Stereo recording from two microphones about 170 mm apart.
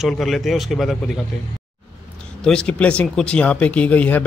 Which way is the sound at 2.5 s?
5° left (ahead or behind).